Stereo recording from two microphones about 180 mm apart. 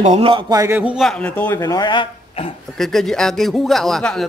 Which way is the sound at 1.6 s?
20° left (ahead or behind).